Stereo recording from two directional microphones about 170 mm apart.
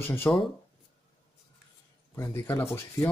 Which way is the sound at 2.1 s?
15° left (ahead or behind).